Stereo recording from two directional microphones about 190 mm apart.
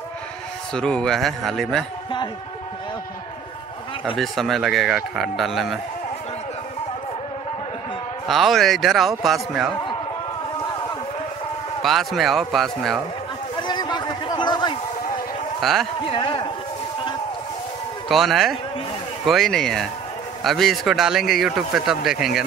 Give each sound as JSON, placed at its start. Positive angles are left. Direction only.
{"t": 0.7, "sound": "a man's voice", "side_deg": 5}
{"t": 4.2, "sound": "a man's voice", "side_deg": 0}
{"t": 8.3, "sound": "a man's voice", "side_deg": 0}
{"t": 11.8, "sound": "a man's voice", "side_deg": 0}
{"t": 13.6, "sound": "a sound", "side_deg": 25}
{"t": 15.6, "sound": "a man's voice", "side_deg": 0}
{"t": 16.1, "sound": "a man's voice", "side_deg": 25}
{"t": 18.0, "sound": "a man's voice", "side_deg": 0}